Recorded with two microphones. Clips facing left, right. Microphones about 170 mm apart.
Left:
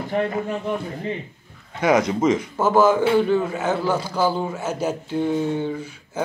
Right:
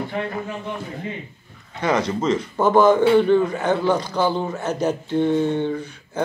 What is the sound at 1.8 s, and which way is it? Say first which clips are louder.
A man's voice: left 3 dB; 10° left (ahead or behind).